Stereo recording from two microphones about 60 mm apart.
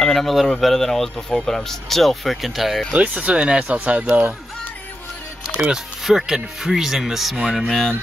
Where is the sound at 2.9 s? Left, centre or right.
Centre.